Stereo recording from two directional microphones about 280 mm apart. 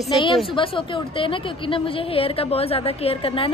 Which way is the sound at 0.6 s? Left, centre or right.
Centre.